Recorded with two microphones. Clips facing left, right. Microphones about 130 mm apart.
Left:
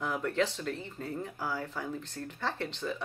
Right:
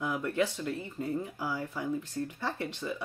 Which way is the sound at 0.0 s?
10° right (ahead or behind).